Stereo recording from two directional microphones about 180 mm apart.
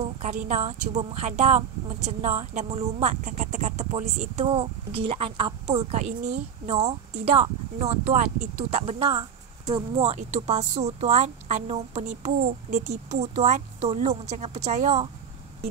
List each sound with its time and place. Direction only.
0.2 s speech: 40° right (ahead or behind)